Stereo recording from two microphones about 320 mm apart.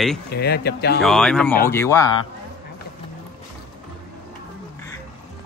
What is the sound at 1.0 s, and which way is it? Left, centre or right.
A man's voice, centre.